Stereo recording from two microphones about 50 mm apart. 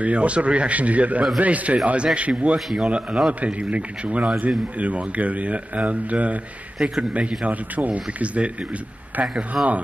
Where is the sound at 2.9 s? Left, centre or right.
Right.